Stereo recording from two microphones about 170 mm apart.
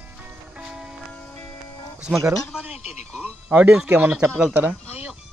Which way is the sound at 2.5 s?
5° right (ahead or behind).